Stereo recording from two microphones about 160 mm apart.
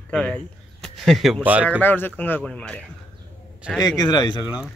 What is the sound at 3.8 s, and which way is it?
Speech, 25° left (ahead or behind).